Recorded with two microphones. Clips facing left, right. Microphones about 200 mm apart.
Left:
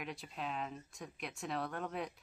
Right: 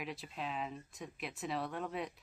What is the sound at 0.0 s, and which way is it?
Speech, centre (ahead or behind).